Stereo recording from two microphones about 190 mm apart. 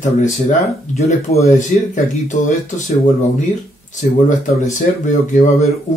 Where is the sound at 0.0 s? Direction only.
40° left (ahead or behind).